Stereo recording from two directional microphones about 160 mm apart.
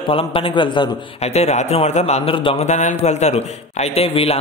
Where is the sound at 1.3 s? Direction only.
45° left (ahead or behind).